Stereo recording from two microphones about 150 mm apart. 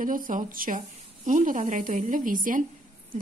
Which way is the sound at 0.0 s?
65° right (ahead or behind).